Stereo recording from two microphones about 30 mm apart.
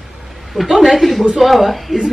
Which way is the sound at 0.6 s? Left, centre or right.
Centre.